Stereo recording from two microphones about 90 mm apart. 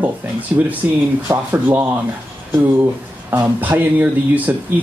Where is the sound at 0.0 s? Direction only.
20° right (ahead or behind).